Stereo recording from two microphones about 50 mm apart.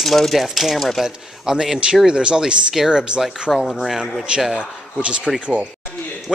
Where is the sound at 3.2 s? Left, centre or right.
Centre.